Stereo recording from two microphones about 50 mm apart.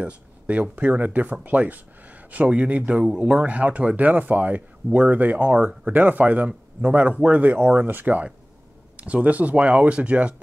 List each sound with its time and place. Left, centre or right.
0.0 s speech: right